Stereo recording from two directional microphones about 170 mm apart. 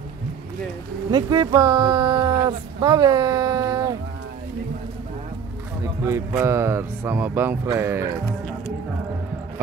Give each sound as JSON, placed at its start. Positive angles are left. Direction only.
{"t": 1.1, "sound": "speech", "side_deg": -25}
{"t": 6.0, "sound": "speech", "side_deg": -15}